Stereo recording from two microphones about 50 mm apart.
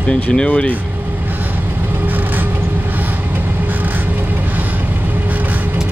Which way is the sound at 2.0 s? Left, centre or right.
Right.